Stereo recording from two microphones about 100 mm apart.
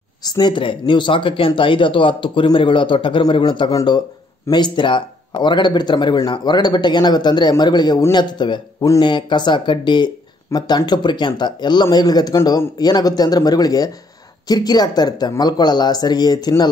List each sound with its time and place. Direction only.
0.2 s speech: 40° left (ahead or behind)